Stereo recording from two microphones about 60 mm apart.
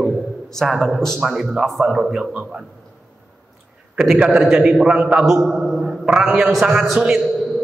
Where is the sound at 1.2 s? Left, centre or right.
Centre.